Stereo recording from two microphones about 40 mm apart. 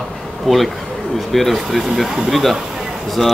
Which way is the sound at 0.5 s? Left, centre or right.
Centre.